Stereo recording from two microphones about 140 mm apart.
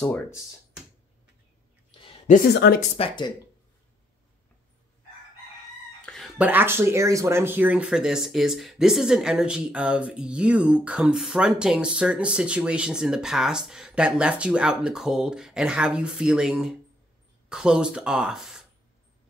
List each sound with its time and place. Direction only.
2.2 s a woman's voice: 60° left (ahead or behind)
3.0 s speech: 30° left (ahead or behind)
6.0 s a sound: centre (ahead or behind)
6.3 s speech: 10° right (ahead or behind)